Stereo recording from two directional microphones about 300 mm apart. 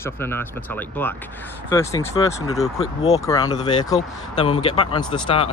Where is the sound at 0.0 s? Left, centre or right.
Centre.